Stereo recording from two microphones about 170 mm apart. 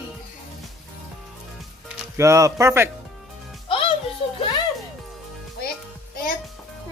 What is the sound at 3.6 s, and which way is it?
Music, 30° left (ahead or behind).